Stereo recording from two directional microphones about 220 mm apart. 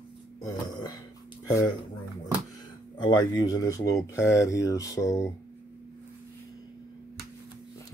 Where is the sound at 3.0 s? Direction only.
20° left (ahead or behind).